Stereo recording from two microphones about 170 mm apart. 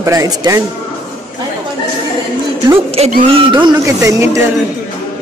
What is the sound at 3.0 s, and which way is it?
Speech, 35° right (ahead or behind).